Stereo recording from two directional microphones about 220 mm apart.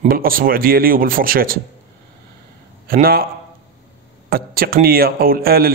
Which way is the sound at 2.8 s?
40° right (ahead or behind).